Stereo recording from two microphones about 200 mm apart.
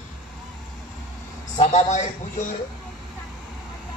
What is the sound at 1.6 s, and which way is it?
Speech, 35° left (ahead or behind).